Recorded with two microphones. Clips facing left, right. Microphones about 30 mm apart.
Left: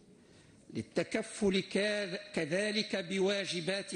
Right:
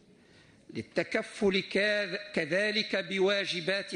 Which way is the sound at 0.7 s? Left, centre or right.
Right.